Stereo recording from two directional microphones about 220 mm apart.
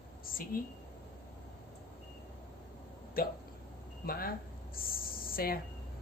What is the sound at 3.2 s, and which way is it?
Speech, 40° left (ahead or behind).